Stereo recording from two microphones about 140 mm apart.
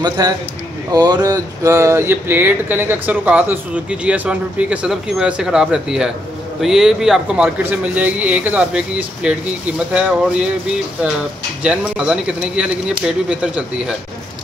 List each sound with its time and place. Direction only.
0.2 s speech: 25° right (ahead or behind); by 10.5 s 5° right (ahead or behind)
11.6 s speech: 5° right (ahead or behind)